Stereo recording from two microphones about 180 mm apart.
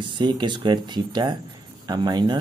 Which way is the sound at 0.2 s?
25° right (ahead or behind).